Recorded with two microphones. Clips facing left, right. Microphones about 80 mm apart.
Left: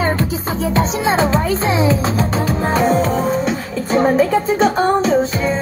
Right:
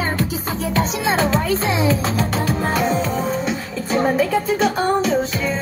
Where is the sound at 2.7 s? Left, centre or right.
Left.